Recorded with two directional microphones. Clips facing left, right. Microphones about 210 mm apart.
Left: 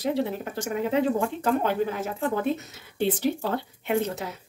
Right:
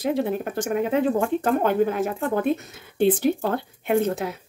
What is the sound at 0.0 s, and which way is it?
Speech, 55° right (ahead or behind).